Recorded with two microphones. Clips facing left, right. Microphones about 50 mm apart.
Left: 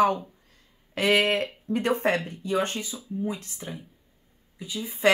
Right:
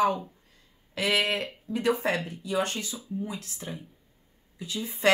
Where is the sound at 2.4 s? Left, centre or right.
Left.